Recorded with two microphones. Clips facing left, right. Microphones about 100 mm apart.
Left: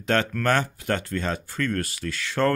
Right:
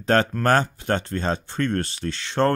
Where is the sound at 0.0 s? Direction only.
35° right (ahead or behind).